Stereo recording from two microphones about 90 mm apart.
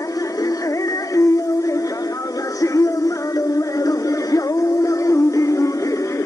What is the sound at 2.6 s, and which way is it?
Music, 40° left (ahead or behind).